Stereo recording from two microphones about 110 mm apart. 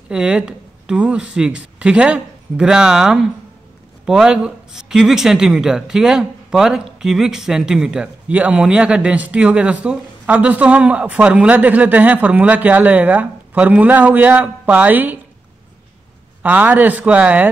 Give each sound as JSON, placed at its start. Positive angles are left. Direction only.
{"t": 0.1, "sound": "a man's voice", "side_deg": -10}
{"t": 16.4, "sound": "speech", "side_deg": -15}